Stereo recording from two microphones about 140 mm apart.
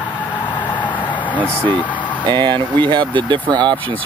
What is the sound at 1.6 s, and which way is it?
Speech, 10° left (ahead or behind).